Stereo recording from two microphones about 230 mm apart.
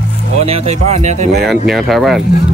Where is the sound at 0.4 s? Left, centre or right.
Right.